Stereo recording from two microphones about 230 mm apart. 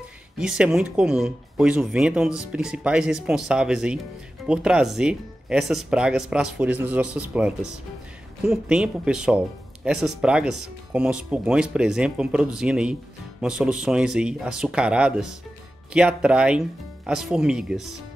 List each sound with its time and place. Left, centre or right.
0.4 s speech: centre